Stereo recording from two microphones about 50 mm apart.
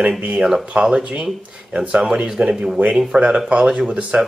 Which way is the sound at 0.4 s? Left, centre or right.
Centre.